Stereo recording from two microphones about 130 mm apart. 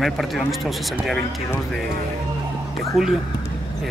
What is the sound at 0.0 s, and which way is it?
Speech, centre (ahead or behind).